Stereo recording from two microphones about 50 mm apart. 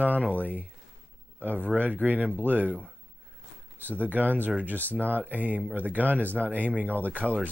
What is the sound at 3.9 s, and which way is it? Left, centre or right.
Speech, right.